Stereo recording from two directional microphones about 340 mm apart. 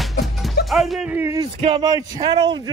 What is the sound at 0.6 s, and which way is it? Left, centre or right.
A man's voice, centre.